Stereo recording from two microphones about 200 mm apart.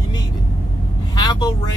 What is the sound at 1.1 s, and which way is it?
Speech, 20° left (ahead or behind).